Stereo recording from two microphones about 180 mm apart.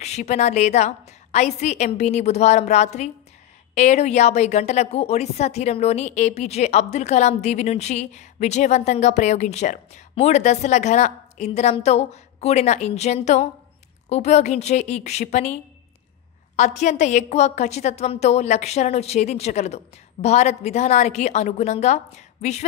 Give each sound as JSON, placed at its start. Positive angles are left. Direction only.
{"t": 0.0, "sound": "a woman's voice", "side_deg": 40}